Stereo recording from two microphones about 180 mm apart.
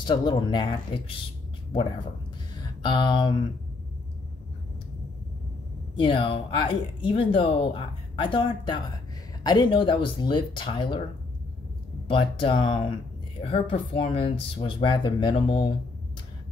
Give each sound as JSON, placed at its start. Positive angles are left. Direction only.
{"t": 0.0, "sound": "speech", "side_deg": 25}
{"t": 2.6, "sound": "speech", "side_deg": 25}
{"t": 5.9, "sound": "speech", "side_deg": 30}
{"t": 12.1, "sound": "speech", "side_deg": 30}